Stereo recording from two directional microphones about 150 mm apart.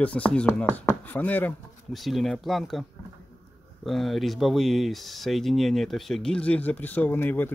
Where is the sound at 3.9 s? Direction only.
Centre (ahead or behind).